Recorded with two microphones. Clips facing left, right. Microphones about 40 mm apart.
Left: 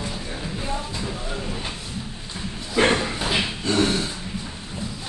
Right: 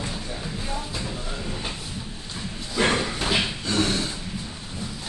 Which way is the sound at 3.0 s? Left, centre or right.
Centre.